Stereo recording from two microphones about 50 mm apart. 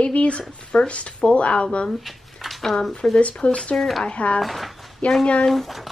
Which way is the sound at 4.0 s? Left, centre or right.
Left.